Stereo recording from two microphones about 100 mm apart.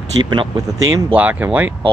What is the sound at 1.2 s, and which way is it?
Speech, 15° right (ahead or behind).